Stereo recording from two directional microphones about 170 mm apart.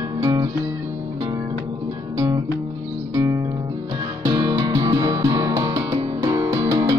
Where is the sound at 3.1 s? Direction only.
20° right (ahead or behind).